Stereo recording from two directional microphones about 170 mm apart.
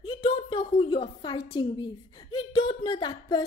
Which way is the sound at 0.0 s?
30° left (ahead or behind).